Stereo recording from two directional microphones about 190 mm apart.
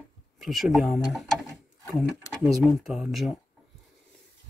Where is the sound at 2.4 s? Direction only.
Centre (ahead or behind).